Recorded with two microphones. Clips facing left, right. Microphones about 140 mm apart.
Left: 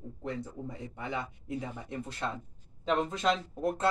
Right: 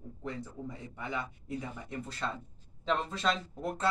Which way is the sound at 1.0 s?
20° left (ahead or behind).